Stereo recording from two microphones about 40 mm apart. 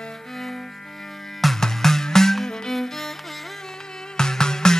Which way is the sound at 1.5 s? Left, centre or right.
Centre.